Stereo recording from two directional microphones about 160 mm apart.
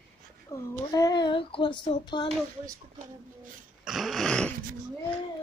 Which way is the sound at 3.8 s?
Centre (ahead or behind).